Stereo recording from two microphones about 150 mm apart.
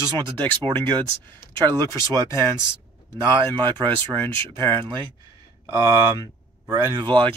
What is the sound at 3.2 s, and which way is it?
Speech, 30° right (ahead or behind).